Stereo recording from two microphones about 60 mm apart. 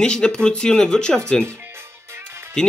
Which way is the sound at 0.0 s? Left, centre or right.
Centre.